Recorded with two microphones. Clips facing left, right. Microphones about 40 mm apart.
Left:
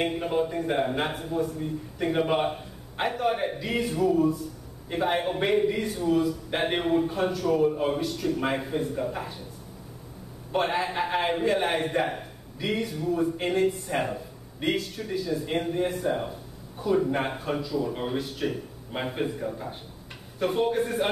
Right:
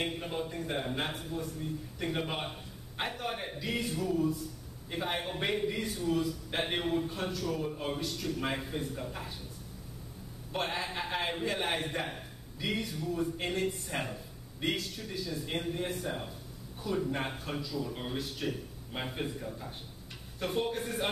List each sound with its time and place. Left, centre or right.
0.0 s a man's voice: centre
10.5 s a man's voice: centre